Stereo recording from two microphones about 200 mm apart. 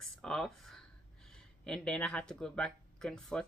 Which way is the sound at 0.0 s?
Centre (ahead or behind).